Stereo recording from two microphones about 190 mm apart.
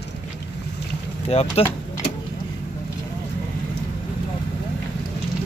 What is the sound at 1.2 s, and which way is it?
Speech, 30° left (ahead or behind).